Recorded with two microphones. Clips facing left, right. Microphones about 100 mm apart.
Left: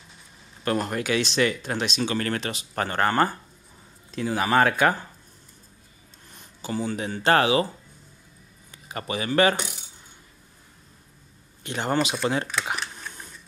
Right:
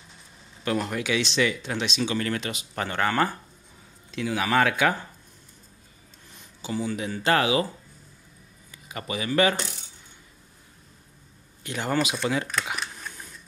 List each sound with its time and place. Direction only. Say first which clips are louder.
0.7 s speech: left 1 dB; 45° left (ahead or behind)
6.3 s a sound: left 1 dB; 45° left (ahead or behind)
7.2 s speech: left 2 dB; 35° left (ahead or behind)
8.7 s speech: left 2 dB; 35° left (ahead or behind)
9.6 s coin: left 1 dB; 10° left (ahead or behind)
11.6 s speech: left 1 dB; 25° left (ahead or behind)